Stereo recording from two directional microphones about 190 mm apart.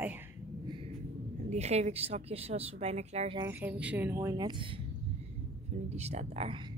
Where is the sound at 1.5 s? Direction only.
35° right (ahead or behind).